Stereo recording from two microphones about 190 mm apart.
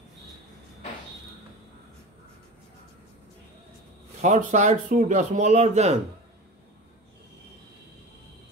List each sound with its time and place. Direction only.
4.2 s speech: 40° right (ahead or behind)